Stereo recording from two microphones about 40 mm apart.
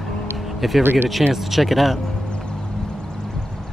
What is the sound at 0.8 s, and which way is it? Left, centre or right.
Speech, right.